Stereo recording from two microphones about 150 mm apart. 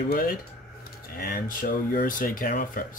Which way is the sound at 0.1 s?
70° left (ahead or behind).